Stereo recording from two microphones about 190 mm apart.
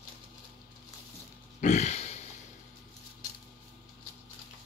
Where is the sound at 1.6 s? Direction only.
40° left (ahead or behind).